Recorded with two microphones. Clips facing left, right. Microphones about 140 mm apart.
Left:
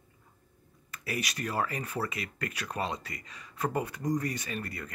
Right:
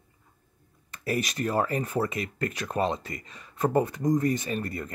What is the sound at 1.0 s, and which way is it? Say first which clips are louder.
Speech: right 7 dB; 40° right (ahead or behind).